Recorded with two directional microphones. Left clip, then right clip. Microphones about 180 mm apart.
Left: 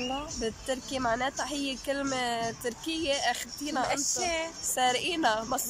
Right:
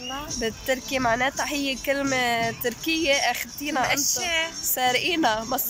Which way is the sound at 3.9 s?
20° left (ahead or behind).